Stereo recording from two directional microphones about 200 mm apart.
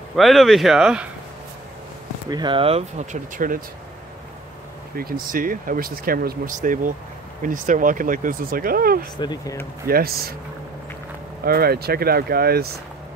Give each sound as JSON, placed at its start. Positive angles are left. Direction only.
{"t": 0.1, "sound": "speech", "side_deg": 0}
{"t": 2.2, "sound": "speech", "side_deg": -20}
{"t": 4.9, "sound": "speech", "side_deg": -45}
{"t": 9.1, "sound": "speech", "side_deg": 20}
{"t": 9.8, "sound": "speech", "side_deg": -50}
{"t": 11.4, "sound": "speech", "side_deg": -50}